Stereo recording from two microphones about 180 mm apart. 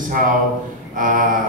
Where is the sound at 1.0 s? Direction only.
50° right (ahead or behind).